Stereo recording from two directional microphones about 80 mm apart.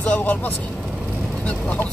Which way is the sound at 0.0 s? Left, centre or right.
Centre.